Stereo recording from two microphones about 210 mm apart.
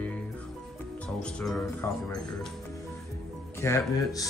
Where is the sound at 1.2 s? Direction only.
5° left (ahead or behind).